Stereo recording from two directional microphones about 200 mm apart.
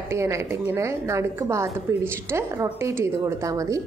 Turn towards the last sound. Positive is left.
turn(degrees=-15)  # may be behind; listen again after turning